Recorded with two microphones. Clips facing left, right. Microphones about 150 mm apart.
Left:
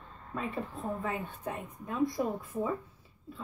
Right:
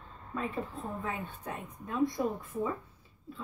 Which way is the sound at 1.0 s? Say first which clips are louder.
Left 2 dB; centre (ahead or behind).